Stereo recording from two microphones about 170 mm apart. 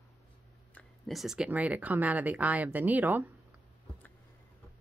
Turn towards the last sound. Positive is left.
turn(degrees=-10)  # may be behind; listen again after turning